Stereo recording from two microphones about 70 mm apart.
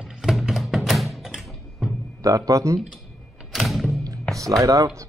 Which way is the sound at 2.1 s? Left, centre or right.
Right.